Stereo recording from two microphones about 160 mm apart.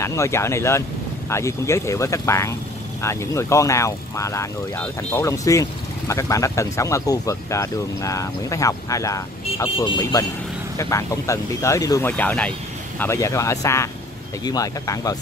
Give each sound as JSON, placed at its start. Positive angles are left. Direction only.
{"t": 0.0, "sound": "speech", "side_deg": 15}
{"t": 12.1, "sound": "speech", "side_deg": 10}